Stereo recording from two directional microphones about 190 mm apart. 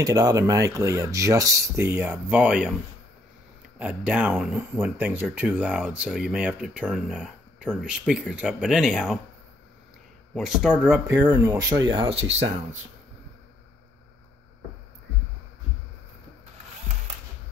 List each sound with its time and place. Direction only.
0.0 s speech: 20° right (ahead or behind)
3.7 s speech: 5° right (ahead or behind)
10.3 s speech: centre (ahead or behind); by 12.3 s 30° right (ahead or behind)